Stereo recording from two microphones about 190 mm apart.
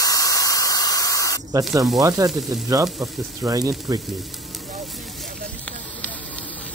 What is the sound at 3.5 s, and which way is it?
Sizzle, 20° right (ahead or behind).